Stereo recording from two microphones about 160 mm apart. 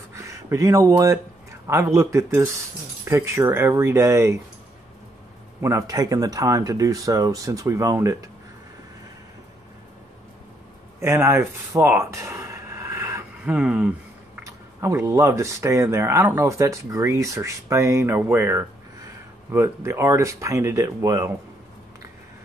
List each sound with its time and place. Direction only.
0.1 s speech: 20° right (ahead or behind)
5.6 s speech: 20° right (ahead or behind)
11.0 s speech: 15° right (ahead or behind)